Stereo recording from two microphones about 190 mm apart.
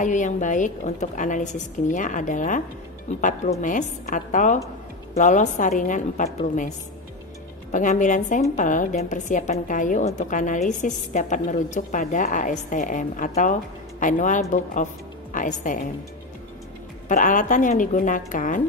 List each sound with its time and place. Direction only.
0.0 s a woman's voice: 40° left (ahead or behind)
7.7 s a woman's voice: 40° left (ahead or behind)
17.1 s a woman's voice: 45° left (ahead or behind)